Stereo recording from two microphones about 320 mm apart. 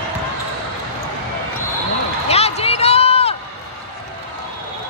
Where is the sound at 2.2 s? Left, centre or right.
Centre.